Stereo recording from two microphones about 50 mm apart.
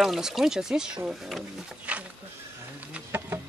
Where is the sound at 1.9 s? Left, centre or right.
Right.